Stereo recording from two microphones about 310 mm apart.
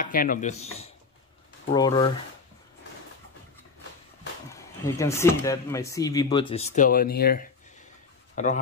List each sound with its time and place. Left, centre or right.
0.0 s speech: left
1.7 s speech: centre
4.5 s speech: centre